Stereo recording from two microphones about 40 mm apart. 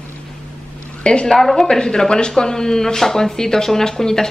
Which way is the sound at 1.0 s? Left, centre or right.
Left.